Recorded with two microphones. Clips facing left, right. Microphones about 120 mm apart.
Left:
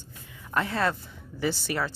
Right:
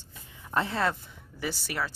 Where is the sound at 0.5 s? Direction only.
20° right (ahead or behind).